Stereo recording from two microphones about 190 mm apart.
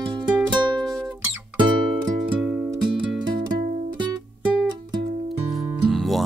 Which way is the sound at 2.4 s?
5° right (ahead or behind).